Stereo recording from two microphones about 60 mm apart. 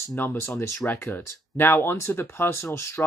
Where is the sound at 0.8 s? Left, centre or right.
Left.